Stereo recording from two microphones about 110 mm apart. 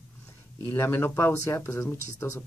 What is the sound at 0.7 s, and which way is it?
Speech, 20° left (ahead or behind).